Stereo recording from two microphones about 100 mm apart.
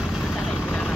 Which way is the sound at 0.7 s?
10° left (ahead or behind).